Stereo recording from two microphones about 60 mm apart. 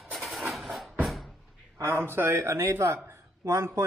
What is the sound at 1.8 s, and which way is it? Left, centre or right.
Speech, right.